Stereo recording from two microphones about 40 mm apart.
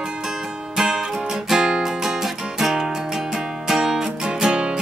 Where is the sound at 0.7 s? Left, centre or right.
Centre.